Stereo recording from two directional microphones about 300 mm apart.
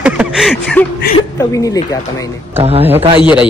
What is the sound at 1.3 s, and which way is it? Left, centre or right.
Speech, centre.